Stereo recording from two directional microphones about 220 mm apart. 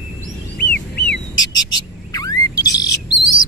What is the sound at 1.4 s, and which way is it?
Bird, 20° left (ahead or behind).